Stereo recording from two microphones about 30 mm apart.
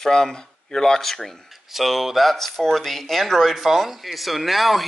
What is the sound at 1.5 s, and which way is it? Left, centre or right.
Speech, centre.